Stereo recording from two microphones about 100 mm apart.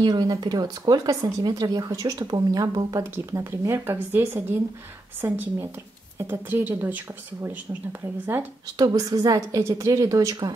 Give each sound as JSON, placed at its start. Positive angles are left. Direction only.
{"t": 0.0, "sound": "a woman's voice", "side_deg": -40}
{"t": 8.7, "sound": "speech", "side_deg": -40}